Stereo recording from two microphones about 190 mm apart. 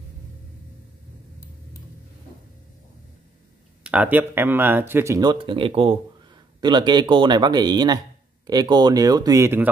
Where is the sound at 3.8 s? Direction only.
5° right (ahead or behind).